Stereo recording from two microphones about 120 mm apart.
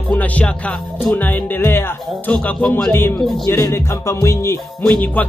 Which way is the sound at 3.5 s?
20° left (ahead or behind).